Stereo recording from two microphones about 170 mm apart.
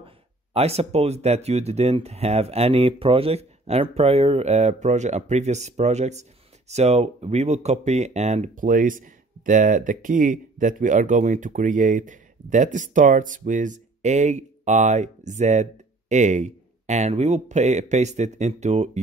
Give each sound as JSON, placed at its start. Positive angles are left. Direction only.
{"t": 0.0, "sound": "speech", "side_deg": -35}